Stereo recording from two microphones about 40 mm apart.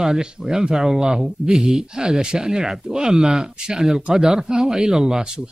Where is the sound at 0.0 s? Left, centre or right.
Centre.